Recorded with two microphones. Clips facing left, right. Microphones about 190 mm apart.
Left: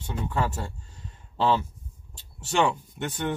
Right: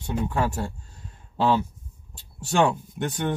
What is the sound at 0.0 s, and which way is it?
Speech, 15° right (ahead or behind).